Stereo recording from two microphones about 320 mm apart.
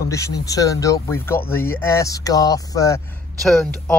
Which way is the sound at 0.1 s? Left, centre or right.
Centre.